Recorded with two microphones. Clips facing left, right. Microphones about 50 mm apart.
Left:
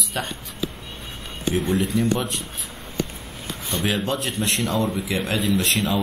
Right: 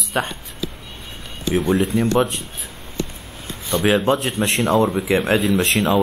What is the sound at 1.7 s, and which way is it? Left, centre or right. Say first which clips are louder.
Speech: right 5 dB; right.